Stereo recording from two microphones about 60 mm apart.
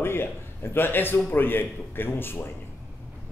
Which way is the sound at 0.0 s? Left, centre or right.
Left.